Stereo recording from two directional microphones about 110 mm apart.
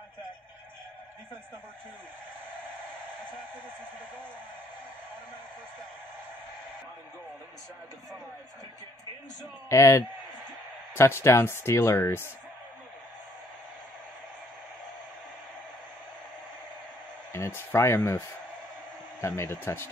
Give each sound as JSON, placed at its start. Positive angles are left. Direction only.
{"t": 9.7, "sound": "speech", "side_deg": 25}
{"t": 17.3, "sound": "speech", "side_deg": 20}
{"t": 19.2, "sound": "speech", "side_deg": 25}